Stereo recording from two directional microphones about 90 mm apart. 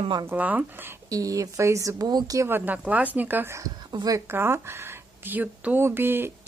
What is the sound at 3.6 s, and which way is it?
Speech, 45° right (ahead or behind).